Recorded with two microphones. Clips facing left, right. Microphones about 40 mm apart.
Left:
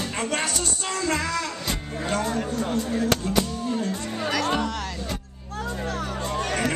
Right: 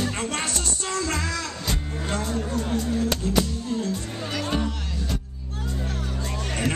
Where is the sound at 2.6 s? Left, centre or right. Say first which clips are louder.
Left 1 dB; left.